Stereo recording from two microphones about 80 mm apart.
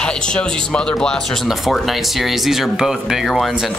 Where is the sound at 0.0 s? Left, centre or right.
Centre.